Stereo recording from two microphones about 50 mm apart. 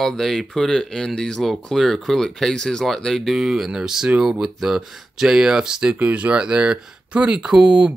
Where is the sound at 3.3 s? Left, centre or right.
Centre.